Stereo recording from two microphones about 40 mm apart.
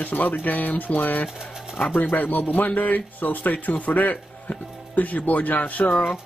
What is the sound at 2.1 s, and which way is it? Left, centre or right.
A man's voice, left.